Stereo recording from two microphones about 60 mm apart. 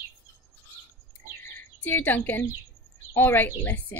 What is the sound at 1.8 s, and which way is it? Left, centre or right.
Speech, left.